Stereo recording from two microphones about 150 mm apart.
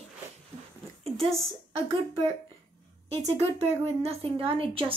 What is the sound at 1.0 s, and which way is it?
A woman's voice, 40° right (ahead or behind).